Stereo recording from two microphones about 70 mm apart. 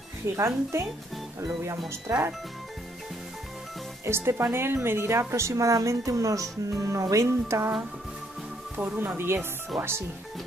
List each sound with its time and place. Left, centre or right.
0.4 s speech: right
2.1 s speech: right
4.0 s speech: right
8.7 s speech: right